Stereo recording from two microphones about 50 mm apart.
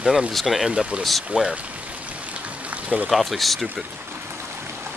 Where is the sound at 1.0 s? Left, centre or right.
Centre.